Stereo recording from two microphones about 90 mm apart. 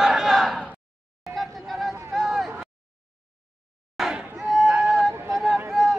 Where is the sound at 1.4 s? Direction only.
Centre (ahead or behind).